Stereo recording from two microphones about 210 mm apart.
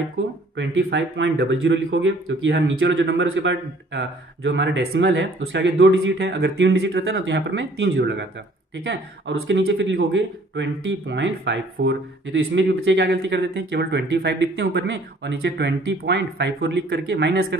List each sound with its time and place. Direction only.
0.6 s speech: 55° right (ahead or behind)
2.5 s speech: 55° right (ahead or behind)
9.5 s speech: 65° right (ahead or behind)